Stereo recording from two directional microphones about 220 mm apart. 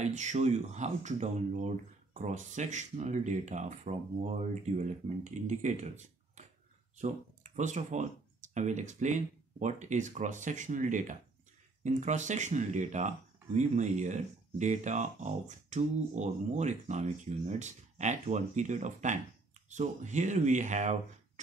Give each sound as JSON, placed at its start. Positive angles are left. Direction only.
{"t": 0.0, "sound": "speech", "side_deg": -30}